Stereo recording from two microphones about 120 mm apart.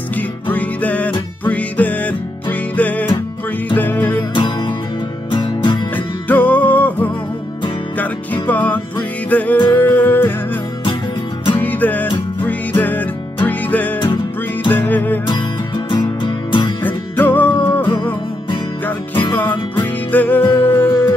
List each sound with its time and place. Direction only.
0.1 s music: 15° left (ahead or behind)
4.3 s music: 40° left (ahead or behind)
5.9 s music: 15° left (ahead or behind)
15.2 s music: 40° left (ahead or behind)
16.8 s music: 15° left (ahead or behind)
19.3 s music: 15° left (ahead or behind)